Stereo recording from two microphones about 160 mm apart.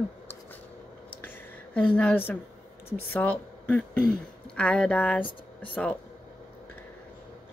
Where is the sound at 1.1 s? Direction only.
10° left (ahead or behind).